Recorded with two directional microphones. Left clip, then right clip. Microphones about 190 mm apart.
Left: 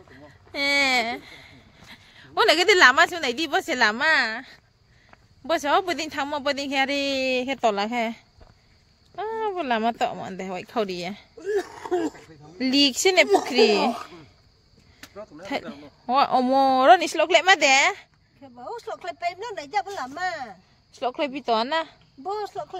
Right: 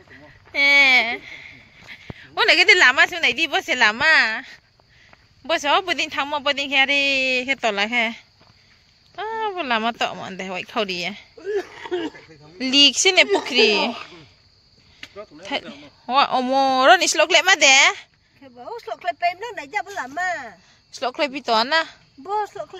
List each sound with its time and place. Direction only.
0.1 s speech: 20° left (ahead or behind)
5.5 s speech: 15° left (ahead or behind)
11.3 s a sound: 25° left (ahead or behind); by 12.3 s 40° left (ahead or behind)
12.5 s speech: 15° left (ahead or behind)
15.0 s a sound: 35° left (ahead or behind)
15.7 s speech: 15° left (ahead or behind)
18.7 s speech: 70° left (ahead or behind)
20.9 s speech: 5° right (ahead or behind)
22.3 s speech: 60° left (ahead or behind)